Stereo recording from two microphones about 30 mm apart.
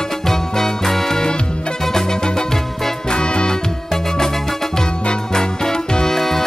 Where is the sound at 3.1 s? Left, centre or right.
Left.